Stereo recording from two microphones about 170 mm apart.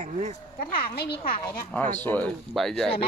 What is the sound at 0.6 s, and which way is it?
A woman's voice, 65° left (ahead or behind).